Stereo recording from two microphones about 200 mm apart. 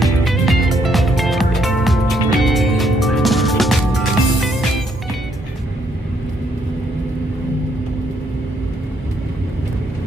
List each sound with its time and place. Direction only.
0.0 s music: centre (ahead or behind)